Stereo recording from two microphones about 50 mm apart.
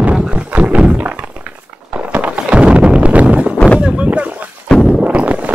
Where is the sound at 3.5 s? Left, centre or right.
Left.